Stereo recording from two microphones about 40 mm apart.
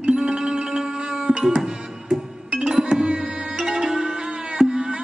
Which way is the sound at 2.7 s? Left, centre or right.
Centre.